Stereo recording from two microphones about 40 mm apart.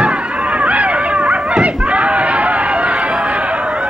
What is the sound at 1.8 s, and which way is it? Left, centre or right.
Chatter, right.